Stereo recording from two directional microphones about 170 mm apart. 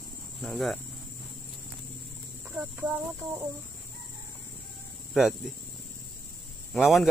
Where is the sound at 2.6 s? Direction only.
15° right (ahead or behind).